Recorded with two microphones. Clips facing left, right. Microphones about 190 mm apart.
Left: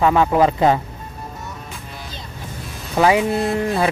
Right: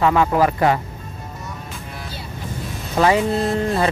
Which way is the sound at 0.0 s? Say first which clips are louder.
Left 1 dB; 15° left (ahead or behind).